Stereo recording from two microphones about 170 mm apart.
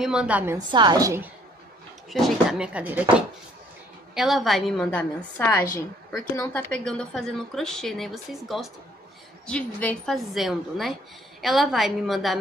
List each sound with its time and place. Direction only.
0.0 s a woman's voice: 5° right (ahead or behind)
0.6 s a woman's voice: 25° right (ahead or behind)
2.0 s a woman's voice: centre (ahead or behind)
5.4 s a woman's voice: 15° left (ahead or behind); by 12.4 s centre (ahead or behind)